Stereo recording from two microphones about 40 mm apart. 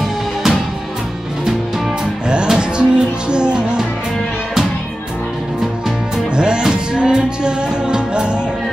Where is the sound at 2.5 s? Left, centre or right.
Right.